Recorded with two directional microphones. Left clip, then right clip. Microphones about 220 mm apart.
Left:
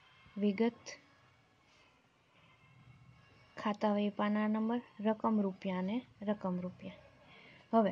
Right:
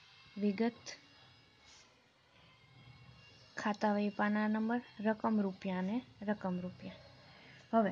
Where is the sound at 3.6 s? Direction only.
10° left (ahead or behind).